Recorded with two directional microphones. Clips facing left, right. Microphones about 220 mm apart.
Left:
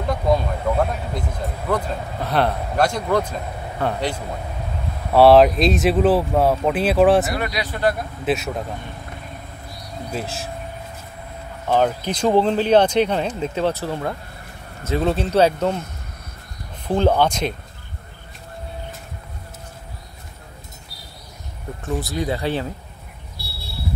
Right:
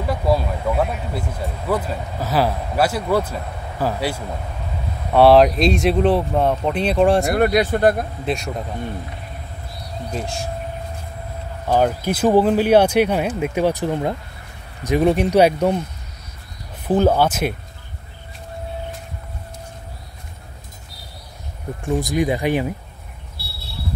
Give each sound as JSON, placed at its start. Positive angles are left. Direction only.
{"t": 0.0, "sound": "speech", "side_deg": -5}
{"t": 7.3, "sound": "speech", "side_deg": -50}
{"t": 8.3, "sound": "speech", "side_deg": 5}
{"t": 10.1, "sound": "speech", "side_deg": 5}
{"t": 11.6, "sound": "speech", "side_deg": -10}
{"t": 16.8, "sound": "speech", "side_deg": -5}
{"t": 21.8, "sound": "speech", "side_deg": -15}
{"t": 23.4, "sound": "a sound", "side_deg": 15}